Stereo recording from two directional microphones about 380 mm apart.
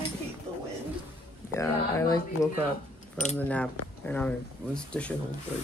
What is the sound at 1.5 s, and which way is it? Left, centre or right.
Speech, centre.